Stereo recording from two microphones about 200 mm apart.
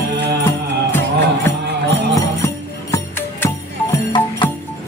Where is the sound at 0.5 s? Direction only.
15° left (ahead or behind).